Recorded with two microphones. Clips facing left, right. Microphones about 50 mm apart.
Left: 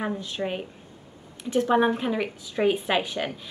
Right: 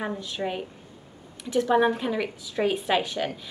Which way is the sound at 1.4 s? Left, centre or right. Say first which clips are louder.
Left 1 dB; left.